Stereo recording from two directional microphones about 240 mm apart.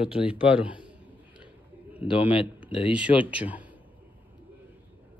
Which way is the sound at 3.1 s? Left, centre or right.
Left.